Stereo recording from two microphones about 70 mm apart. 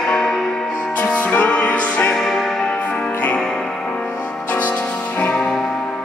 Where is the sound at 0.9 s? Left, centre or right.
Left.